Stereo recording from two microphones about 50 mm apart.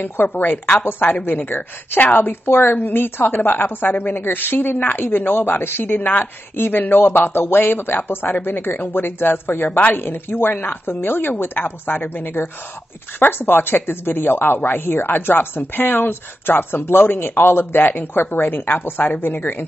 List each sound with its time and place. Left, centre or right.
0.0 s a woman's voice: left
9.7 s a woman's voice: left
9.9 s speech: left